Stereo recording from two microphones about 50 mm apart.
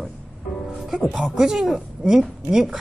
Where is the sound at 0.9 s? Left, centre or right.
Centre.